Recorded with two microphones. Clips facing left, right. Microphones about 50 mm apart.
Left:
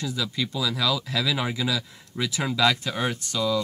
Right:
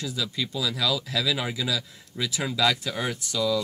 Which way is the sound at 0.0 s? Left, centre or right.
Centre.